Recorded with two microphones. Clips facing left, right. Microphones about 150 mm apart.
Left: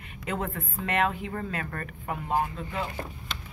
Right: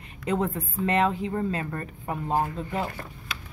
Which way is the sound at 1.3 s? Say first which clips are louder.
Right 5 dB; 20° right (ahead or behind).